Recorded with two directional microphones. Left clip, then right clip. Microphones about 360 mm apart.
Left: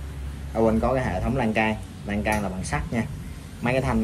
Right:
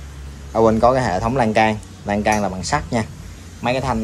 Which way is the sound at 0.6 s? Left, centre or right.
Centre.